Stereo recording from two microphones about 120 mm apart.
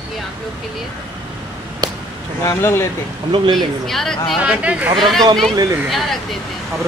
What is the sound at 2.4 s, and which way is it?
Speech, 20° left (ahead or behind).